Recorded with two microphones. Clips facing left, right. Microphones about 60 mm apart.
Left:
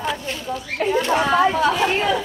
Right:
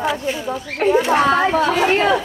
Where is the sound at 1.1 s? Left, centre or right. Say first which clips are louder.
Right 2 dB; right.